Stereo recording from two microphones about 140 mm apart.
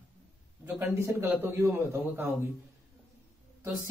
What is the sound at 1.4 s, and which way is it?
Speech, 20° right (ahead or behind).